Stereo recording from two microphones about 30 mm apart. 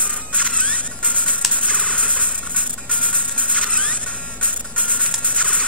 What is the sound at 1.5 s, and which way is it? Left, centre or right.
Music, right.